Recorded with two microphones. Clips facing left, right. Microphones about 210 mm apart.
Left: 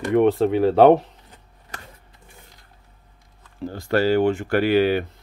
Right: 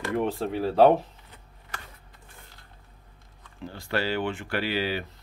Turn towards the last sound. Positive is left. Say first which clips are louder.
# left 10 dB
turn(degrees=55)  # may be behind; listen again after turning